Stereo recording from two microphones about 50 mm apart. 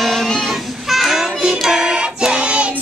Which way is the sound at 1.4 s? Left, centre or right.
Centre.